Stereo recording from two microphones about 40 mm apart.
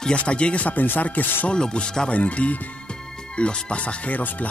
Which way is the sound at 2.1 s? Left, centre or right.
Left.